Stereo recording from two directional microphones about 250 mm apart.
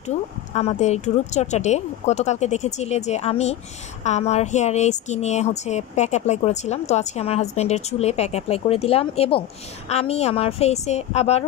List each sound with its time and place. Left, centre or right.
0.6 s speech: left